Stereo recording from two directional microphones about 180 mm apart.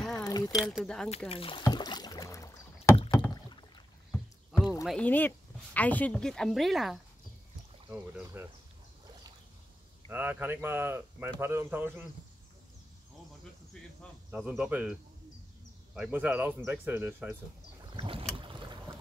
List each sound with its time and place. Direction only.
0.1 s a sound: 20° left (ahead or behind)
0.5 s speech: centre (ahead or behind)
1.3 s speech: 30° left (ahead or behind)
1.6 s rowboat: 20° left (ahead or behind)
4.1 s rowboat: centre (ahead or behind)
4.8 s speech: 5° left (ahead or behind); by 8.5 s 10° right (ahead or behind)
10.0 s speech: 10° right (ahead or behind)
14.3 s speech: 5° right (ahead or behind)
17.9 s boat: 30° right (ahead or behind)